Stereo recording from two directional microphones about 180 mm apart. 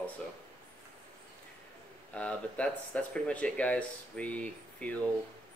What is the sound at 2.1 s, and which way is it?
Speech, 5° left (ahead or behind).